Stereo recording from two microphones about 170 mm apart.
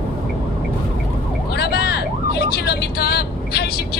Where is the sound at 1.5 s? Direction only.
70° left (ahead or behind).